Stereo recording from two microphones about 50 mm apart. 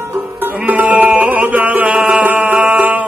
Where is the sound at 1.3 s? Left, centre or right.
Right.